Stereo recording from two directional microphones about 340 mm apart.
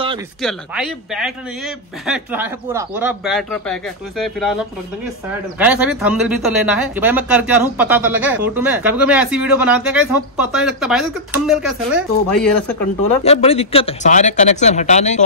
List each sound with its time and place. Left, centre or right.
0.4 s speech: centre
5.6 s speech: centre
13.2 s speech: centre